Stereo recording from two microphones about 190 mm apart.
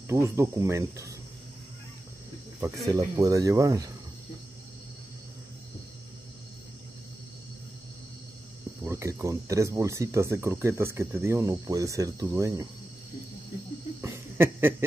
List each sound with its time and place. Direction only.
0.1 s speech: 15° right (ahead or behind)
2.6 s speech: 20° right (ahead or behind)
8.8 s speech: 15° right (ahead or behind)
14.0 s a sound: 15° right (ahead or behind)